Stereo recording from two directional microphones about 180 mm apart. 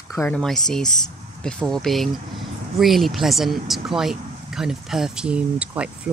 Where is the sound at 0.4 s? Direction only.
Centre (ahead or behind).